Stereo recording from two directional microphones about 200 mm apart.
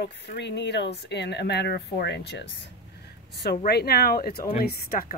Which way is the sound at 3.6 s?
55° left (ahead or behind).